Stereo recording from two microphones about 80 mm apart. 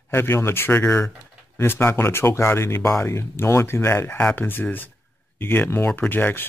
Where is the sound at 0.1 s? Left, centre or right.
Left.